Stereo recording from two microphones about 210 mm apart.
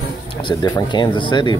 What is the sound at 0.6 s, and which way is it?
Speech, 20° left (ahead or behind).